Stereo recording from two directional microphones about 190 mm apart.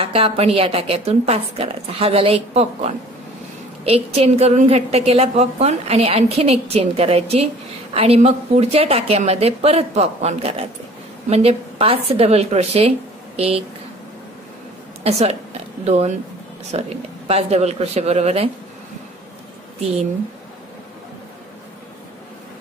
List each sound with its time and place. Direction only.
0.0 s a woman's voice: 30° right (ahead or behind)
15.0 s a woman's voice: 35° right (ahead or behind)